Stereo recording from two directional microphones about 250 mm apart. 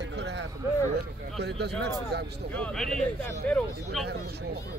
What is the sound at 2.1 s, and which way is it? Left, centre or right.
Speech, right.